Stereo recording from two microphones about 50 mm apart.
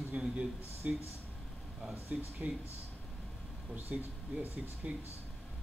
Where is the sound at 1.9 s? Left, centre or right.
Right.